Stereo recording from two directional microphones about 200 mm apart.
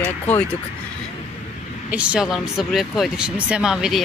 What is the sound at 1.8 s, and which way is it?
Speech, 5° right (ahead or behind).